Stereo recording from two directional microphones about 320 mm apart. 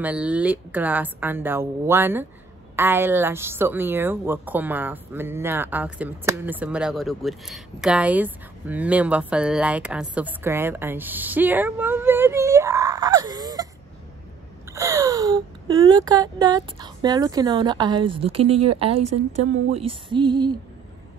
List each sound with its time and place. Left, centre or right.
0.0 s a woman's voice: centre
14.7 s a sound: centre
15.9 s a woman's voice: centre